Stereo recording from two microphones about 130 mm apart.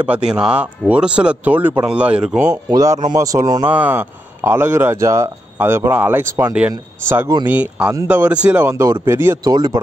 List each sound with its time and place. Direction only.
0.0 s speech: 10° right (ahead or behind)
2.5 s speech: 25° right (ahead or behind)
3.6 s speech: 15° right (ahead or behind); by 9.8 s 30° right (ahead or behind)